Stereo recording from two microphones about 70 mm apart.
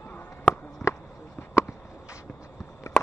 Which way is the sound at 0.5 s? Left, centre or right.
Left.